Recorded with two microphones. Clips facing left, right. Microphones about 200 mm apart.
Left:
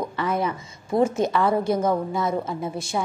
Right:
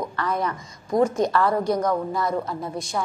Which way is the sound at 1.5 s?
25° left (ahead or behind).